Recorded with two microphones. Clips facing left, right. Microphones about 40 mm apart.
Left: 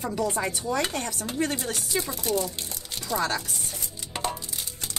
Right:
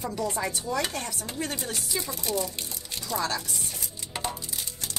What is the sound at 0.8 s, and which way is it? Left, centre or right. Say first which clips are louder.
Speech: left 3 dB; left.